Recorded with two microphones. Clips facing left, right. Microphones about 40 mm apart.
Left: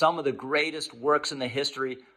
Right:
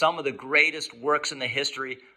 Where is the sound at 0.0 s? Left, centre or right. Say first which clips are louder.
Even; right.